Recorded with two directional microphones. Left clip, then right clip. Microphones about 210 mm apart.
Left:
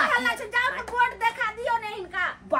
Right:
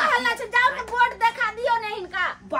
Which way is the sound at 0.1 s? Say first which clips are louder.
Right 3 dB; 45° right (ahead or behind).